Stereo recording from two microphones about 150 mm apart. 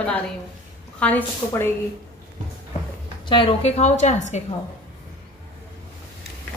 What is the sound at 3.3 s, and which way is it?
A woman's voice, 35° left (ahead or behind).